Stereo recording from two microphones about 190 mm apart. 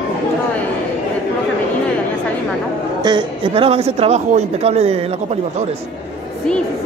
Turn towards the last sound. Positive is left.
turn(degrees=-35)  # may be behind; listen again after turning